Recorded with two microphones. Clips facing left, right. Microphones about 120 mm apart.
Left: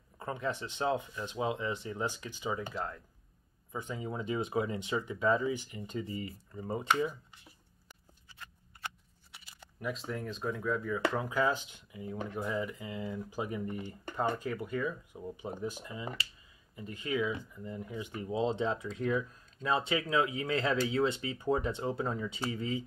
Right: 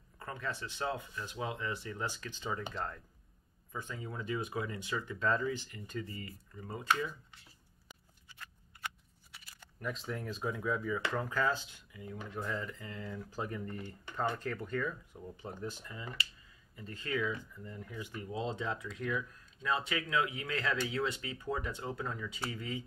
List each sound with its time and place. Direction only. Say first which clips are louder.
0.2 s speech: left 5 dB; 20° left (ahead or behind); by 3.0 s 5° left (ahead or behind)
3.7 s speech: left 4 dB; 20° left (ahead or behind)
9.8 s speech: left 2 dB; 5° left (ahead or behind)
11.2 s speech: left 3 dB; 15° left (ahead or behind)